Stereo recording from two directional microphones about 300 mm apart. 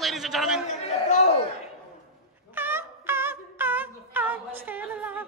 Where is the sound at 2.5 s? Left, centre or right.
Centre.